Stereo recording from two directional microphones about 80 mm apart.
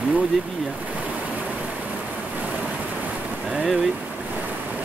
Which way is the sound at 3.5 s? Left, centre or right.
Centre.